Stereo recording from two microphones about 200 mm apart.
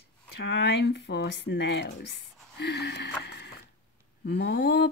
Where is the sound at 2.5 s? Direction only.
55° left (ahead or behind).